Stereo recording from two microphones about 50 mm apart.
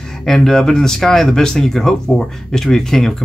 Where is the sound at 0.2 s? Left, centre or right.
Centre.